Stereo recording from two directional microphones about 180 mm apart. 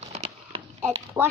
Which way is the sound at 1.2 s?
10° right (ahead or behind).